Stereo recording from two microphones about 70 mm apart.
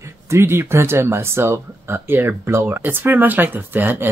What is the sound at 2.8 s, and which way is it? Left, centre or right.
Speech, right.